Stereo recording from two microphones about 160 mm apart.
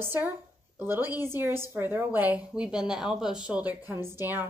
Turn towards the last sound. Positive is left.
turn(degrees=-15)  # may be behind; listen again after turning